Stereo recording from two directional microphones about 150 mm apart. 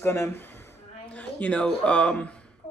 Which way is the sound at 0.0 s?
15° left (ahead or behind).